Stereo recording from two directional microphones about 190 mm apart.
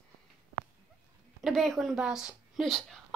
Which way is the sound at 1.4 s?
Centre (ahead or behind).